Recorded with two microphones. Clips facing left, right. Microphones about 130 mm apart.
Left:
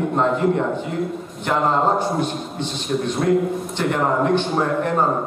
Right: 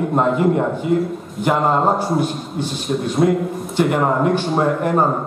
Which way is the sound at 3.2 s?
20° right (ahead or behind).